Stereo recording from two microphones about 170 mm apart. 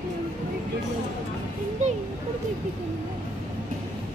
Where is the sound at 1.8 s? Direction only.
45° right (ahead or behind).